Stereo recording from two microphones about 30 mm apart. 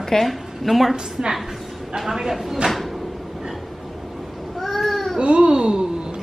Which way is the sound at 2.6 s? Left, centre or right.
Centre.